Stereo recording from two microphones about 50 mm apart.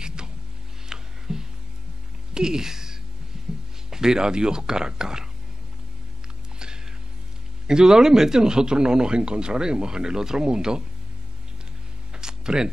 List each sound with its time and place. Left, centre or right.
0.0 s music: centre
0.8 s a sound: centre
2.3 s speech: centre
3.3 s music: centre
3.9 s a man's voice: centre
7.6 s a man's voice: centre
12.1 s a sound: centre